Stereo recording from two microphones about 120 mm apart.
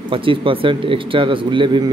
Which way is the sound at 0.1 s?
45° right (ahead or behind).